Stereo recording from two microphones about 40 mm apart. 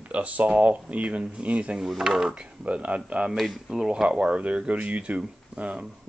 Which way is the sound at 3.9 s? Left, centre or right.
Right.